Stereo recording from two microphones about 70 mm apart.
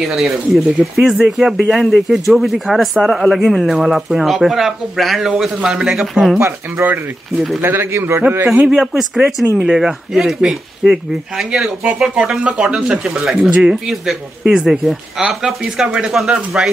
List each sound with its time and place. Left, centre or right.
0.0 s speech: centre
6.3 s a man's voice: right
8.6 s speech: centre
12.4 s speech: centre